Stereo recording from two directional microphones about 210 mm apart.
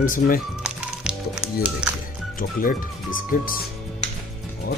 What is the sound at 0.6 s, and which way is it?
Music, 5° right (ahead or behind).